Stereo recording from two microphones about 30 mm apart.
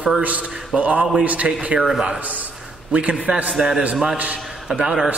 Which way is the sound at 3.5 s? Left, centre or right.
Centre.